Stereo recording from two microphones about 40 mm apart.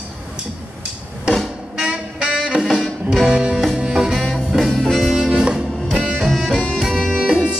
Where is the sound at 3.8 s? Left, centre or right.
Centre.